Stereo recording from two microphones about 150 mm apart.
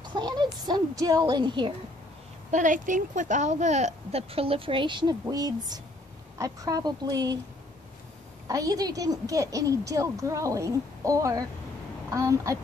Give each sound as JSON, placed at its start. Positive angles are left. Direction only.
{"t": 0.0, "sound": "a woman's voice", "side_deg": -30}
{"t": 2.5, "sound": "a woman's voice", "side_deg": -60}
{"t": 8.5, "sound": "a woman's voice", "side_deg": -25}